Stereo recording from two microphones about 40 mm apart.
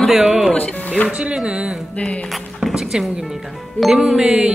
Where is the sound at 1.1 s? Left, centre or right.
Right.